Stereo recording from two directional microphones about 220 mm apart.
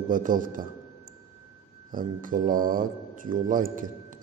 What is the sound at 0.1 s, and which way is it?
Speech, 40° right (ahead or behind).